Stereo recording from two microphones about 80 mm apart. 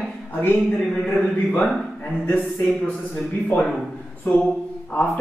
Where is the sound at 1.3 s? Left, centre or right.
Centre.